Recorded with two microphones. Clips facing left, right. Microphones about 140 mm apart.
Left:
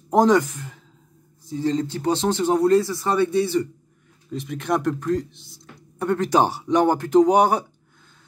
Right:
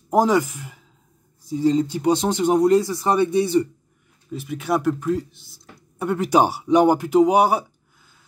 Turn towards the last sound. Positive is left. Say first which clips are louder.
# even
turn(degrees=-5)  # may be behind; listen again after turning